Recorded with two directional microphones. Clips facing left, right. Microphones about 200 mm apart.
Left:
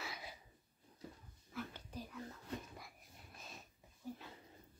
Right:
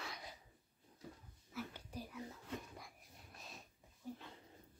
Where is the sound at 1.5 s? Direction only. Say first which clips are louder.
Even; 10° right (ahead or behind).